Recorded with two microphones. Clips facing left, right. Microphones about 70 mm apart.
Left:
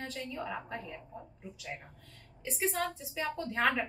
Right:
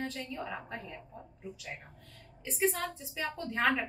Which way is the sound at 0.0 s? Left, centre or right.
Centre.